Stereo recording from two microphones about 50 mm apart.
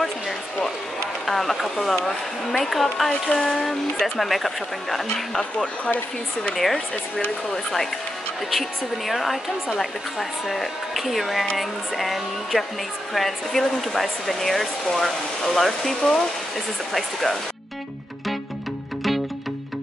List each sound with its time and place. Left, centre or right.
1.2 s speech: centre
6.5 s speech: centre
7.2 s speech: centre
8.5 s speech: centre